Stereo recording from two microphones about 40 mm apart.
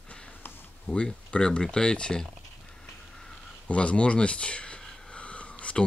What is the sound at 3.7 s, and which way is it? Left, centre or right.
Speech, left.